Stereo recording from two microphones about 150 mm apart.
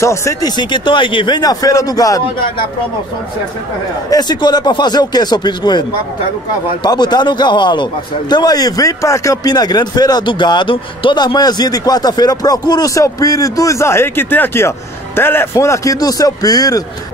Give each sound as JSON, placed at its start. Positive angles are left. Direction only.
{"t": 0.0, "sound": "a man's voice", "side_deg": 20}
{"t": 4.1, "sound": "a man's voice", "side_deg": 30}